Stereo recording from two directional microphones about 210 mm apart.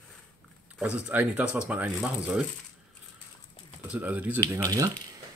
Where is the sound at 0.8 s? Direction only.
5° right (ahead or behind).